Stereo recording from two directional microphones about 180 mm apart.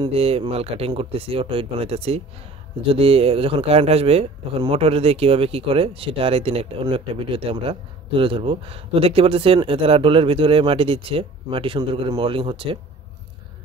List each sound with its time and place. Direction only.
0.0 s speech: 35° right (ahead or behind)